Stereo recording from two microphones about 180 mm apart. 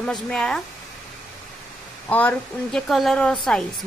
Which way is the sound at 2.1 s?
10° left (ahead or behind).